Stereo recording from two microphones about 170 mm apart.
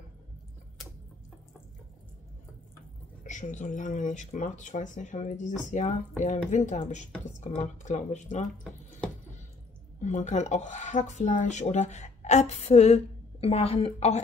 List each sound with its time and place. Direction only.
3.3 s speech: 45° left (ahead or behind)
9.9 s speech: 45° left (ahead or behind)